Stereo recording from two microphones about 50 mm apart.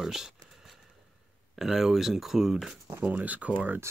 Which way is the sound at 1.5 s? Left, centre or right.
Centre.